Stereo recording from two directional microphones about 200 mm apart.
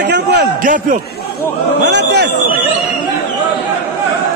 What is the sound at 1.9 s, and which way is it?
Speech, 60° right (ahead or behind).